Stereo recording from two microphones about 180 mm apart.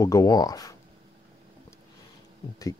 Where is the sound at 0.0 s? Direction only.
20° left (ahead or behind).